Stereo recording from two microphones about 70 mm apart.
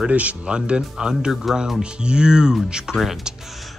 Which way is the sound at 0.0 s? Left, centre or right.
Centre.